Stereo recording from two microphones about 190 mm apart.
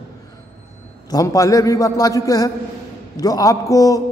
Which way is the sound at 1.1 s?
15° left (ahead or behind).